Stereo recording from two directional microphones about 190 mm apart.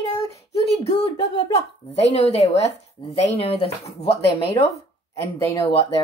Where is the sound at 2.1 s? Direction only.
30° left (ahead or behind).